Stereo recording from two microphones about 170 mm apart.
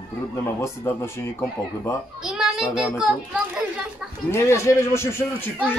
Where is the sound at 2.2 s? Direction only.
5° right (ahead or behind).